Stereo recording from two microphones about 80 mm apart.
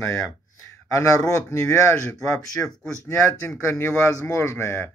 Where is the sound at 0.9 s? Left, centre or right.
Left.